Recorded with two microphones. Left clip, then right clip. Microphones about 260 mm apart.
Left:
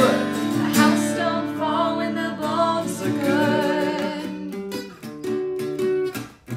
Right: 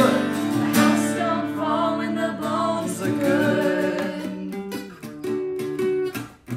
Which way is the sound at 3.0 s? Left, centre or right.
Centre.